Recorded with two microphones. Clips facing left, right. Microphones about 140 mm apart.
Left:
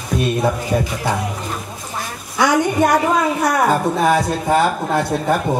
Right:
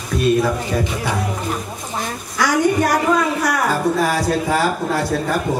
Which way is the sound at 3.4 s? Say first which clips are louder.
Left 3 dB; 20° left (ahead or behind).